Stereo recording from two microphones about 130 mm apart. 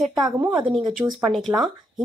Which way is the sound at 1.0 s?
20° right (ahead or behind).